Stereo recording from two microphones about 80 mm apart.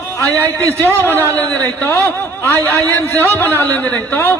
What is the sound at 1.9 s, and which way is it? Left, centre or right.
A man's voice, left.